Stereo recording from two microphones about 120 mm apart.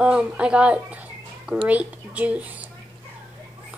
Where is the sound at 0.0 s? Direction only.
10° right (ahead or behind).